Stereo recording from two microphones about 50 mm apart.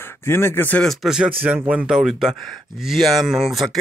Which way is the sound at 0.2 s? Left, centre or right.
Left.